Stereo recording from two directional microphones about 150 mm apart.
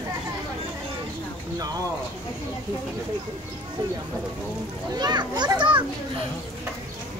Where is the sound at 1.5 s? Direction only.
25° right (ahead or behind).